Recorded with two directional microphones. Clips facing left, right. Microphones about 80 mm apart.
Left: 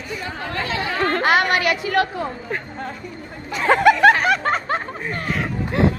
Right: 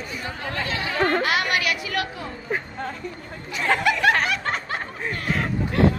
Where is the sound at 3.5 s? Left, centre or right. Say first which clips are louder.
Left 7 dB; left.